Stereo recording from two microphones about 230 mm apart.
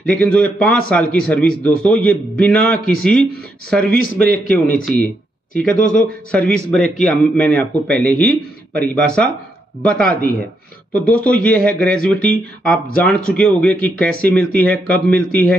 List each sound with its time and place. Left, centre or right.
0.0 s a man's voice: centre
5.6 s a man's voice: centre